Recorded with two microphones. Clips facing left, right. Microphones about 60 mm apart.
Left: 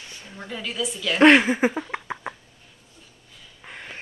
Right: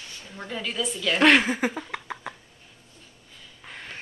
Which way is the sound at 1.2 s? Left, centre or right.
Left.